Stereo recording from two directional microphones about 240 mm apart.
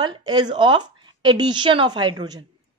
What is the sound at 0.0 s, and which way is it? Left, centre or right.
A woman's voice, centre.